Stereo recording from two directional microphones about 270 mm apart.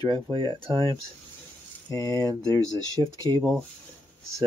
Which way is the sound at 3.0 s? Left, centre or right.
Centre.